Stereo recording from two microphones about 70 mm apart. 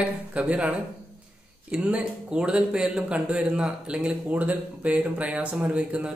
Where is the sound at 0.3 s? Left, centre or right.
Centre.